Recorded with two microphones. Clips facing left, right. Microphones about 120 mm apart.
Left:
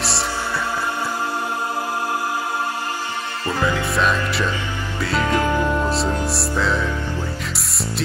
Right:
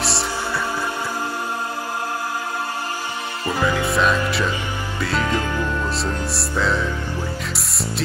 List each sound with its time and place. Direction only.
3.8 s music: centre (ahead or behind)
5.2 s music: 15° left (ahead or behind)
6.3 s music: centre (ahead or behind)